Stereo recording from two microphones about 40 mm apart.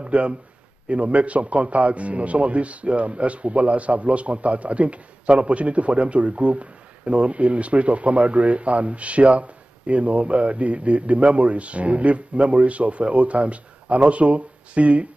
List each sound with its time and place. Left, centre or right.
0.0 s a man's voice: right